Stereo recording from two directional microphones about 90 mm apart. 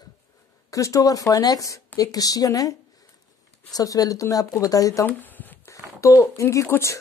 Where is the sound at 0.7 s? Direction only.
35° left (ahead or behind).